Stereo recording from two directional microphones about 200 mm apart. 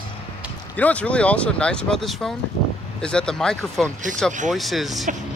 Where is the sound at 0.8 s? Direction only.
5° left (ahead or behind).